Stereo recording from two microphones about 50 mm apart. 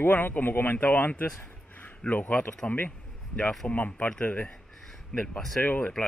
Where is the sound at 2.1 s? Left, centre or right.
Left.